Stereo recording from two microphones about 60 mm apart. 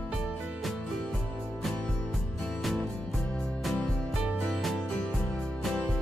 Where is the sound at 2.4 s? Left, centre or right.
Centre.